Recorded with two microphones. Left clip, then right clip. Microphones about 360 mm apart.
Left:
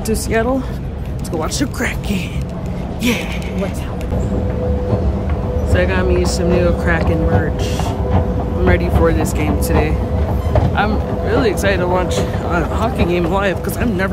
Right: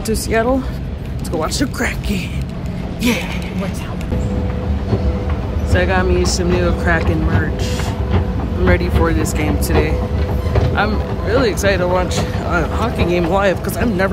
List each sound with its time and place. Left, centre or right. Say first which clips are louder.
0.1 s speech: right 1 dB; centre
5.7 s speech: right 1 dB; centre
8.6 s speech: left 1 dB; centre